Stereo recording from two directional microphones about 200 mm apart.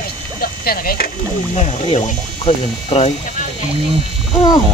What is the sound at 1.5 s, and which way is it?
Speech, 35° left (ahead or behind).